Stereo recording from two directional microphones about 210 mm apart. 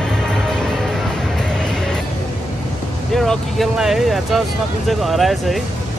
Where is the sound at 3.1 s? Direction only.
Centre (ahead or behind).